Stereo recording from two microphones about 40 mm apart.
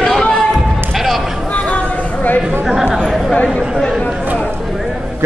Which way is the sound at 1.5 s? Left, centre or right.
Left.